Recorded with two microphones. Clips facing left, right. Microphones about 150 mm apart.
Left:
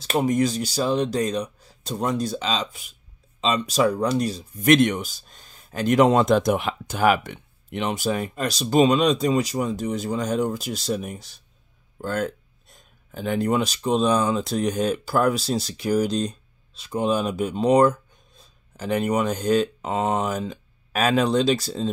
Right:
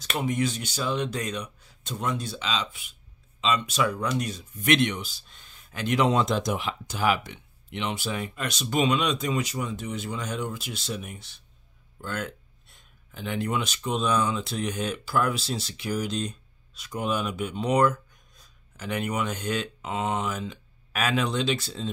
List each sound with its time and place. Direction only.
0.0 s speech: 35° left (ahead or behind)